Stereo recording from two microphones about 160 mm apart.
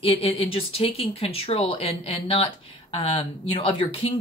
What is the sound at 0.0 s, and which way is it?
Speech, 35° left (ahead or behind).